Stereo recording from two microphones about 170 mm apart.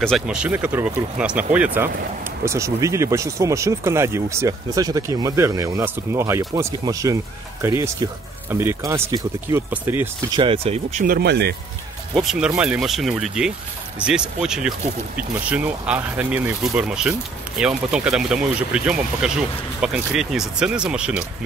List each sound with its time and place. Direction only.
0.0 s speech: centre (ahead or behind)
10.3 s speech: 30° right (ahead or behind)
11.1 s speech: 75° right (ahead or behind)
12.2 s speech: 5° right (ahead or behind)